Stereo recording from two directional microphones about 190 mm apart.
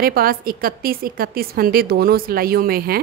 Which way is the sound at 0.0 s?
50° right (ahead or behind).